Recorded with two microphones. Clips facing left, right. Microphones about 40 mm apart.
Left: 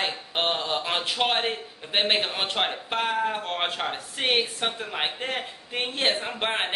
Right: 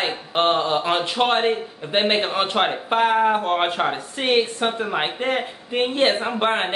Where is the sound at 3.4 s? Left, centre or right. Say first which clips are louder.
Right 8 dB; centre.